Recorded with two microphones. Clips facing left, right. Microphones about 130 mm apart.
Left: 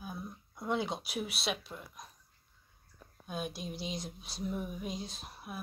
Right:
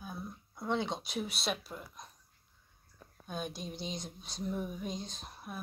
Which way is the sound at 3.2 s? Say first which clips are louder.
Left 1 dB; 5° left (ahead or behind).